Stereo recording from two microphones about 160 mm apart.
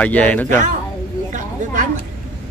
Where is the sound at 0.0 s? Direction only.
10° left (ahead or behind).